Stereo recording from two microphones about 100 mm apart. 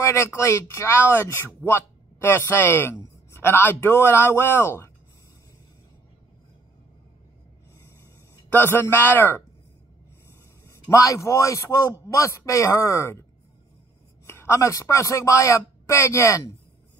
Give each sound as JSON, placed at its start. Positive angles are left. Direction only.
{"t": 0.0, "sound": "speech", "side_deg": 30}
{"t": 8.5, "sound": "speech", "side_deg": 20}
{"t": 10.7, "sound": "speech", "side_deg": 35}
{"t": 14.2, "sound": "a man's voice", "side_deg": 25}